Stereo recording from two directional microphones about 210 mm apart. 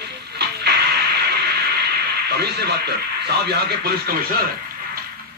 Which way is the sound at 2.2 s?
50° right (ahead or behind).